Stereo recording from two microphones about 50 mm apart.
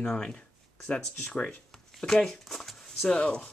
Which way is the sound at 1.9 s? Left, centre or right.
Centre.